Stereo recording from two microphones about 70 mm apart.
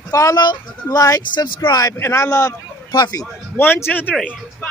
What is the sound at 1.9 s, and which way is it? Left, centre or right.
Speech, left.